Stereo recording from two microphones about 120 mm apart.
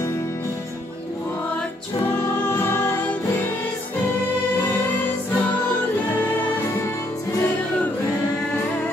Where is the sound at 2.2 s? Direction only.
20° left (ahead or behind).